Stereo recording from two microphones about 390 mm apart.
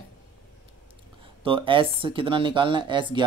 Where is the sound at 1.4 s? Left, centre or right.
Centre.